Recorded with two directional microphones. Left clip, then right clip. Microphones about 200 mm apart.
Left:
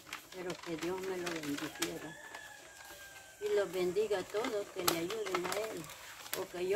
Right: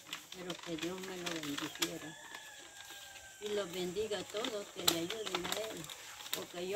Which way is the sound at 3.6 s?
20° left (ahead or behind).